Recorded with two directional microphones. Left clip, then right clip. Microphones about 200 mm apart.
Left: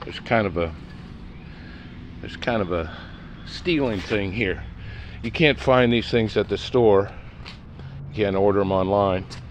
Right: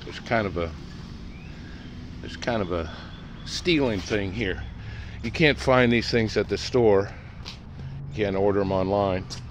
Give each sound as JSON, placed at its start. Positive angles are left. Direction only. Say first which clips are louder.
{"t": 0.1, "sound": "speech", "louder": "left 4 dB", "side_deg": 20}
{"t": 2.2, "sound": "speech", "louder": "left 3 dB", "side_deg": 10}
{"t": 3.4, "sound": "speech", "louder": "even", "side_deg": -10}
{"t": 4.1, "sound": "speech", "louder": "left 3 dB", "side_deg": 20}
{"t": 5.3, "sound": "speech", "louder": "left 2 dB", "side_deg": 5}
{"t": 8.2, "sound": "speech", "louder": "left 3 dB", "side_deg": 15}